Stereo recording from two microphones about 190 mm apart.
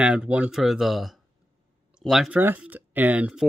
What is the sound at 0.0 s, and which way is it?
Speech, 5° right (ahead or behind).